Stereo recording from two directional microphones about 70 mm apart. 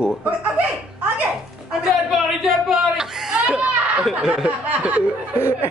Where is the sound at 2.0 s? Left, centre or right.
Centre.